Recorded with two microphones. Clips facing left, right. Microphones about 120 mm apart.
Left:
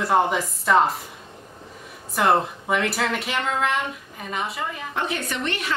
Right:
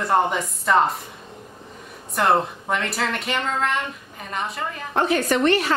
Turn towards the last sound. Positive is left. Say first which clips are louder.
# right 9 dB
turn(degrees=-40)  # may be behind; listen again after turning